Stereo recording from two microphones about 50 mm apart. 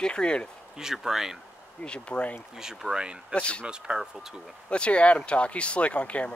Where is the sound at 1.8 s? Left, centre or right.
Left.